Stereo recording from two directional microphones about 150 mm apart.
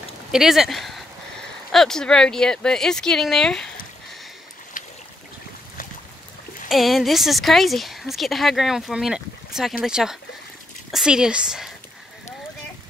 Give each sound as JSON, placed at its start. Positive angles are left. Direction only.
{"t": 0.3, "sound": "a woman's voice", "side_deg": -5}
{"t": 4.7, "sound": "boat", "side_deg": 65}
{"t": 6.7, "sound": "a woman's voice", "side_deg": 0}